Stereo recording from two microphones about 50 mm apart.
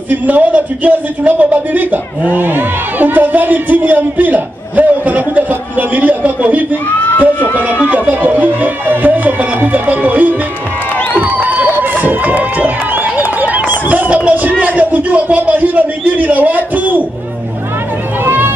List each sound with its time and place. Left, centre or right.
0.1 s speech: right
7.2 s speech: left
7.8 s music: right
11.1 s crowd: right
11.8 s a sound: right
18.2 s run: right